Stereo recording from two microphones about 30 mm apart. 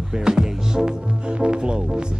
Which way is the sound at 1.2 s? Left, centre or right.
Right.